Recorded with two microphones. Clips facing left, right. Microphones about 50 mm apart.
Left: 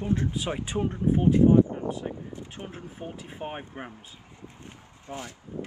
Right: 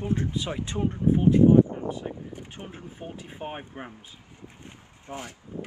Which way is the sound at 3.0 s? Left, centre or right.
Centre.